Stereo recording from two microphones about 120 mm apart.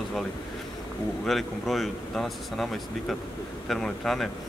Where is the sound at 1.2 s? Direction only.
Centre (ahead or behind).